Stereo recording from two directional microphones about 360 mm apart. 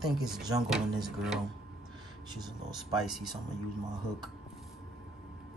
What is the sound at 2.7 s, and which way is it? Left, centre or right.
Speech, centre.